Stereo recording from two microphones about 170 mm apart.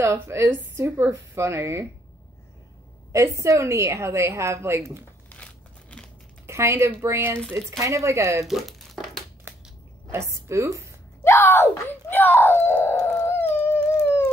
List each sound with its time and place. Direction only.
0.0 s a woman's voice: 15° right (ahead or behind)
3.1 s a woman's voice: 20° right (ahead or behind)
5.3 s scissors: 5° left (ahead or behind)
6.4 s a woman's voice: 15° right (ahead or behind)
8.5 s crumpling: centre (ahead or behind)
9.5 s a sound: 15° right (ahead or behind)
10.1 s a woman's voice: 15° right (ahead or behind)
11.2 s speech: 15° left (ahead or behind)